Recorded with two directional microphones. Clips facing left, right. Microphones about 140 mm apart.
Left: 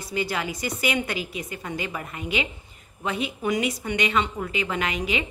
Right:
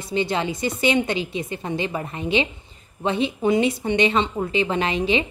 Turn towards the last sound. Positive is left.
turn(degrees=-30)  # may be behind; listen again after turning